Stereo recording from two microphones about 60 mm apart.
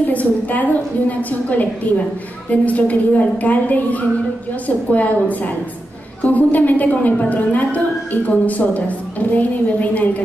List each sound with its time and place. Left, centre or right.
0.1 s a woman's voice: left